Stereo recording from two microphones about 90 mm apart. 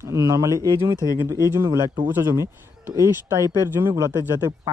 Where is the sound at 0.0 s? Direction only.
35° right (ahead or behind).